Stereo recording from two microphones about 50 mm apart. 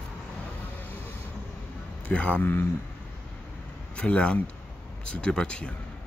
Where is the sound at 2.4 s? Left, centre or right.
Left.